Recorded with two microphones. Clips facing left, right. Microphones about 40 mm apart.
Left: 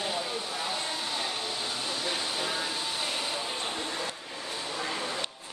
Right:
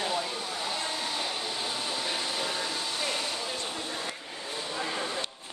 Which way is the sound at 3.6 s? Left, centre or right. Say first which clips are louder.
Left 1 dB; left.